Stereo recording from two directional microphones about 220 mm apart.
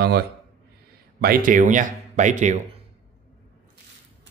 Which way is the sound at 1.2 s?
40° right (ahead or behind).